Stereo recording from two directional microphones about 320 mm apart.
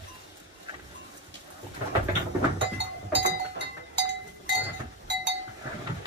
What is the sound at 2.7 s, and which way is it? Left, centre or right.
Chink, right.